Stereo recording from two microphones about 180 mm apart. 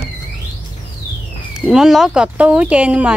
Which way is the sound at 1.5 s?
5° right (ahead or behind).